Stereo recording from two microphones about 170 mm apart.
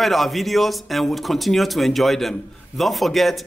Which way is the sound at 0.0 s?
Centre (ahead or behind).